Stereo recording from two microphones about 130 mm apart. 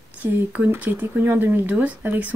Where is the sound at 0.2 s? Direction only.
15° right (ahead or behind).